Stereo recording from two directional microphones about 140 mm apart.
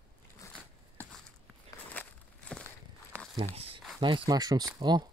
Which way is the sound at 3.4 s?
45° right (ahead or behind).